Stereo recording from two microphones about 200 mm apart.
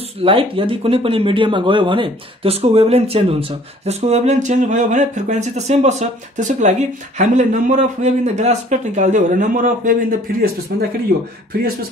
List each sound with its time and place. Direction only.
0.2 s speech: 25° right (ahead or behind); by 10.9 s 50° right (ahead or behind)